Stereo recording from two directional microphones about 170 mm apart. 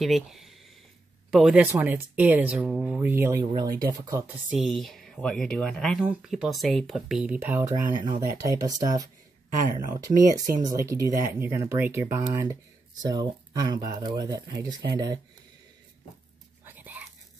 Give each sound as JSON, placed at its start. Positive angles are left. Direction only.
{"t": 0.0, "sound": "speech", "side_deg": 0}
{"t": 4.5, "sound": "speech", "side_deg": 0}
{"t": 16.6, "sound": "whispering", "side_deg": -10}